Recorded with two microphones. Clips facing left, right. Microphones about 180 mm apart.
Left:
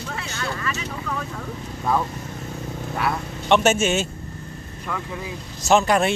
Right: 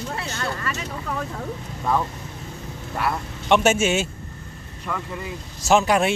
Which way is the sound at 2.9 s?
Centre (ahead or behind).